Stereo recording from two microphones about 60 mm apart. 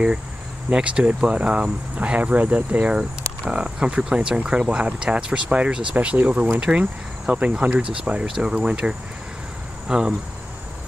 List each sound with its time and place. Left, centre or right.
0.7 s speech: centre